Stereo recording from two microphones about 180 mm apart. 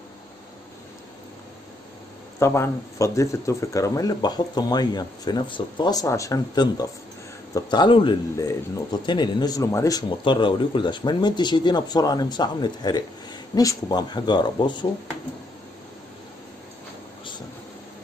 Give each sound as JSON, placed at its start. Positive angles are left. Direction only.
{"t": 2.3, "sound": "speech", "side_deg": 15}